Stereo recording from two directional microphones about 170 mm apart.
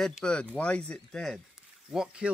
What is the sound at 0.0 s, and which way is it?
Speech, 5° left (ahead or behind).